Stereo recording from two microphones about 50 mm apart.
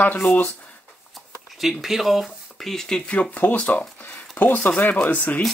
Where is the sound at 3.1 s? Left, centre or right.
Left.